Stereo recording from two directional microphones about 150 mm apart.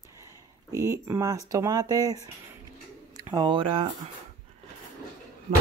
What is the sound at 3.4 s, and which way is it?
Speech, 35° right (ahead or behind).